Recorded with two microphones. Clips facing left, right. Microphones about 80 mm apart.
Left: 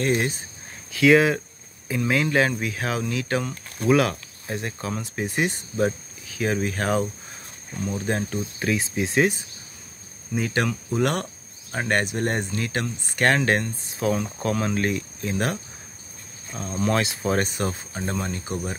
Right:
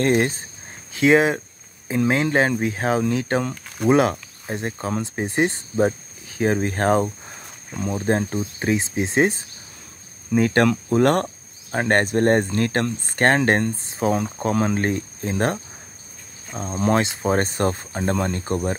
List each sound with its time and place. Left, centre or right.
0.0 s speech: right
0.9 s speech: right
8.5 s speech: right
10.3 s speech: right
17.4 s speech: right